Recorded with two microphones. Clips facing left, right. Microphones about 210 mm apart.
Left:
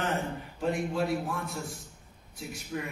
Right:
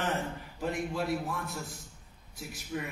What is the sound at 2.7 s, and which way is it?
Speech, 5° right (ahead or behind).